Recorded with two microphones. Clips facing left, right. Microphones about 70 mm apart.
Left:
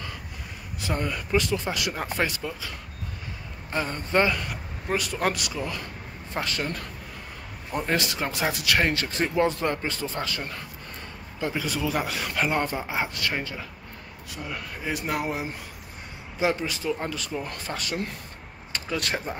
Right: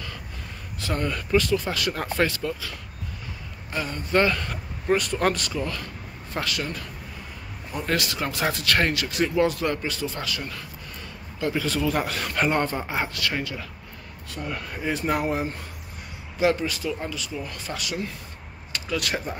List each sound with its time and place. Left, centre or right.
0.7 s a sound: centre
1.3 s speech: left
3.7 s speech: left
4.1 s speech: centre
6.3 s speech: left
7.8 s speech: left
8.9 s speech: left
11.3 s speech: centre
13.1 s speech: left
14.3 s speech: centre
16.3 s speech: left
17.0 s speech: left
18.7 s speech: left